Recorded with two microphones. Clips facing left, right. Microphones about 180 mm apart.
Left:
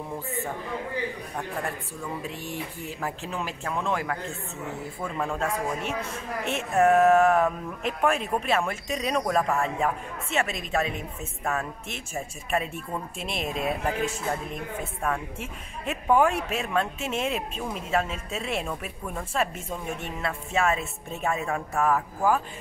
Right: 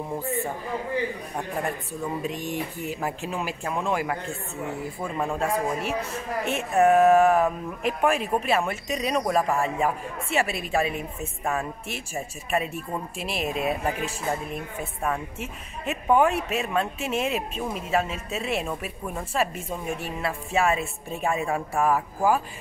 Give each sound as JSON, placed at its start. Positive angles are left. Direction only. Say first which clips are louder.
{"t": 1.3, "sound": "a man's voice", "louder": "right 3 dB", "side_deg": -20}